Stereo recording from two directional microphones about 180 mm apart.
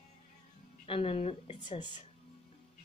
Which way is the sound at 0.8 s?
30° left (ahead or behind).